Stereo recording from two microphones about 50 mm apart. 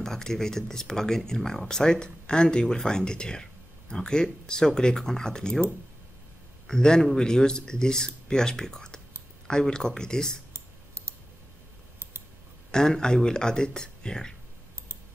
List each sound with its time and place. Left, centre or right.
0.0 s speech: centre
6.7 s speech: centre
10.5 s clicking: right
12.7 s speech: centre